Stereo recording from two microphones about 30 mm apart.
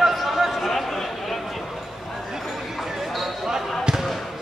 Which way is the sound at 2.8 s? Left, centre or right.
Centre.